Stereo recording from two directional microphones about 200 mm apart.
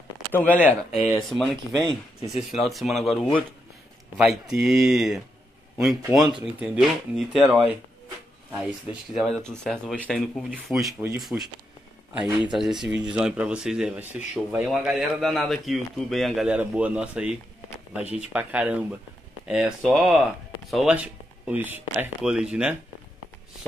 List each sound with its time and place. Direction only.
0.3 s speech: 10° left (ahead or behind)
0.9 s speech: 30° left (ahead or behind)
1.3 s speech: centre (ahead or behind)
9.1 s speech: centre (ahead or behind)
12.5 s speech: centre (ahead or behind)